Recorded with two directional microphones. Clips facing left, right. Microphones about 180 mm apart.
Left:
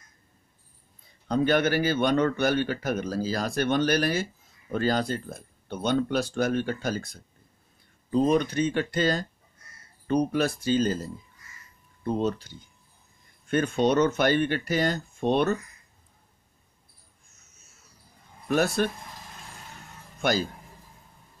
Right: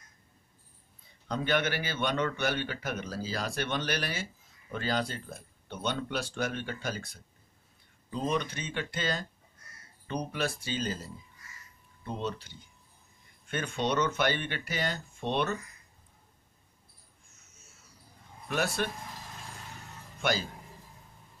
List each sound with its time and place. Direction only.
1.3 s speech: 40° left (ahead or behind)
18.5 s speech: 45° left (ahead or behind)
20.2 s speech: 45° left (ahead or behind)